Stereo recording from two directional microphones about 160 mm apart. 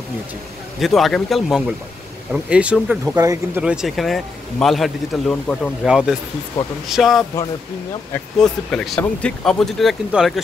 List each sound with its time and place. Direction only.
0.7 s speech: centre (ahead or behind)
3.2 s speech: 20° right (ahead or behind)
3.6 s speech: centre (ahead or behind)
5.9 s speech: 5° right (ahead or behind)